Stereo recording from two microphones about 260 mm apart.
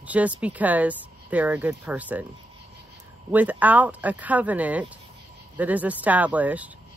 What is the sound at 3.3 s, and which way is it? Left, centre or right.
Speech, centre.